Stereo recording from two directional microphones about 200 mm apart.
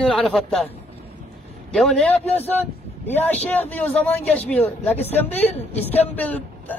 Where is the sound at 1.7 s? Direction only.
Centre (ahead or behind).